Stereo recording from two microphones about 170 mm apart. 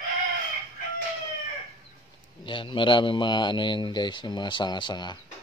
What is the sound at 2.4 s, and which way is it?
A man's voice, 30° left (ahead or behind).